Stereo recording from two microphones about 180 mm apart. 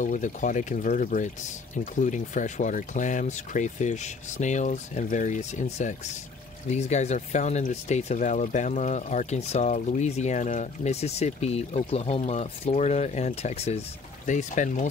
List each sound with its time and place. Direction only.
0.0 s speech: 45° left (ahead or behind)